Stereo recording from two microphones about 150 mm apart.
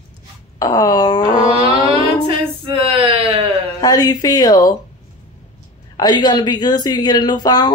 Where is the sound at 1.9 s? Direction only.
40° right (ahead or behind).